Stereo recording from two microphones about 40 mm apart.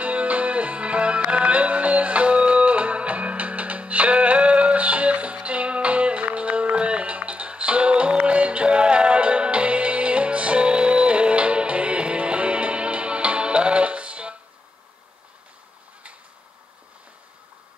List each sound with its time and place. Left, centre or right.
0.0 s music: right